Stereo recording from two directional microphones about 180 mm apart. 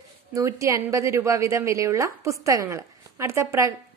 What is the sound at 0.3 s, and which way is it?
A woman's voice, 15° right (ahead or behind).